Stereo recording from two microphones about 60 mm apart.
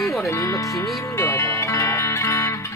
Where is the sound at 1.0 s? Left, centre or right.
Left.